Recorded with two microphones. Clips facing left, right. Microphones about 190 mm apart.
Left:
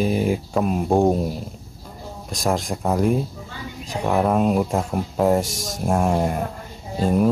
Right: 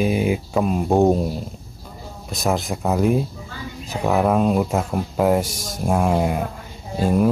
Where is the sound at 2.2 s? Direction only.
5° right (ahead or behind).